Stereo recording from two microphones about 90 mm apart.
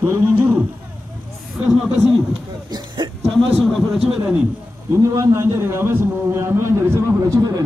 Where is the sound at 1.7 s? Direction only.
10° right (ahead or behind).